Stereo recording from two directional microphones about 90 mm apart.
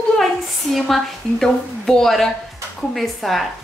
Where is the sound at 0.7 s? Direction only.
5° left (ahead or behind).